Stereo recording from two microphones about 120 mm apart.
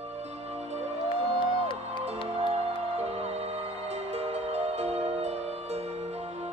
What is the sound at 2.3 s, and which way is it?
Music, 60° right (ahead or behind).